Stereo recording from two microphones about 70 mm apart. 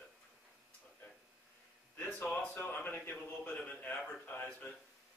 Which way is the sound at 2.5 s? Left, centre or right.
Left.